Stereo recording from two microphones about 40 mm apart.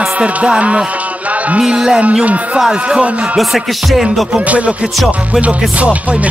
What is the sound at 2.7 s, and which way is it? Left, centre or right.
Speech, right.